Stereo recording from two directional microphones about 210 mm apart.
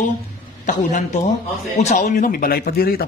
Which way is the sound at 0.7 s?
35° left (ahead or behind).